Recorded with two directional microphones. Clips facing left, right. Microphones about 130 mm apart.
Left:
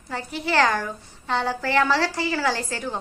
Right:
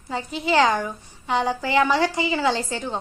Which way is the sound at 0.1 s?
15° right (ahead or behind).